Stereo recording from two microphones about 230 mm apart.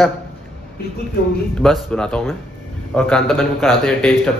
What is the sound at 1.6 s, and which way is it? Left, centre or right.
Speech, centre.